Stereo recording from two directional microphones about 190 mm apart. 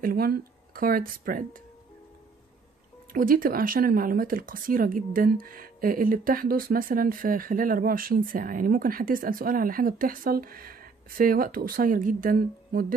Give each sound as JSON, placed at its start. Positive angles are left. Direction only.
{"t": 0.0, "sound": "speech", "side_deg": -50}
{"t": 3.1, "sound": "speech", "side_deg": -50}